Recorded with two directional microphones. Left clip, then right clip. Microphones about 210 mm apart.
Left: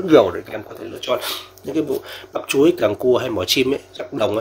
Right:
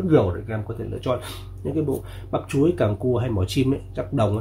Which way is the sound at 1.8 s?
45° left (ahead or behind).